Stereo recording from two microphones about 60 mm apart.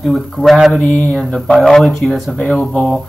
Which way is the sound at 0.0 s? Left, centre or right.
Centre.